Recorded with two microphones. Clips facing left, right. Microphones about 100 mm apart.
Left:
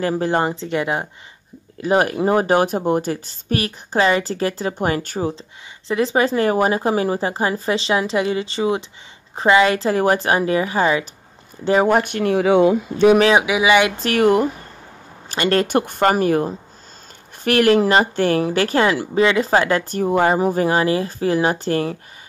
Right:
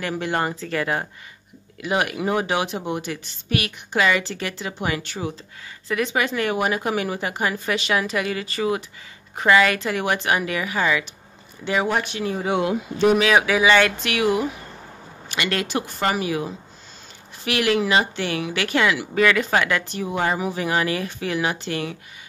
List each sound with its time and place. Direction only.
0.0 s speech: 30° left (ahead or behind)
1.8 s a woman's voice: 35° left (ahead or behind)
5.9 s a woman's voice: 30° left (ahead or behind); by 12.4 s 55° left (ahead or behind)
13.3 s speech: 20° left (ahead or behind)
14.0 s a woman's voice: 45° left (ahead or behind)